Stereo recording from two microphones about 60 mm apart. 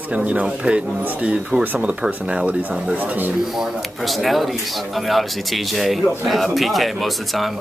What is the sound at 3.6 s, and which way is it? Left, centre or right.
A man's voice, centre.